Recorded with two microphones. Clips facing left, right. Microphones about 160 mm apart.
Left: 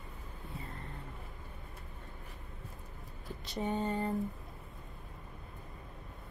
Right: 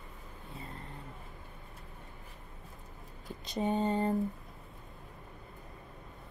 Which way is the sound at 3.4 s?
20° right (ahead or behind).